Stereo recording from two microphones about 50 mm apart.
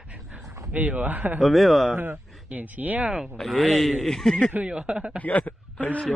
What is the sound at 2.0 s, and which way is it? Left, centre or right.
Speech, right.